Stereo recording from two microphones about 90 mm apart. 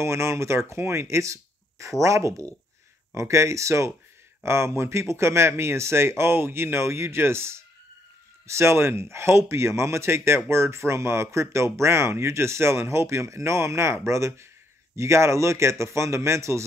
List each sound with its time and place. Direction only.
0.0 s speech: 30° right (ahead or behind)